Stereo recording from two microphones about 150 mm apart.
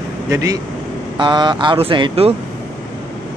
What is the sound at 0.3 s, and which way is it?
A man's voice, 25° right (ahead or behind).